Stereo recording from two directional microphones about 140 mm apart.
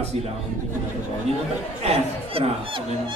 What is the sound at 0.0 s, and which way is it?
Speech, 50° right (ahead or behind).